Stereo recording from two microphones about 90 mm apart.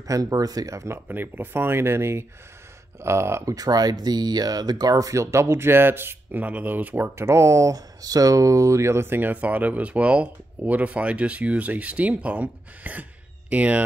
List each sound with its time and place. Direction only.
0.0 s speech: 40° right (ahead or behind)
0.9 s speech: 20° right (ahead or behind)
3.5 s speech: 45° right (ahead or behind); by 13.8 s 15° right (ahead or behind)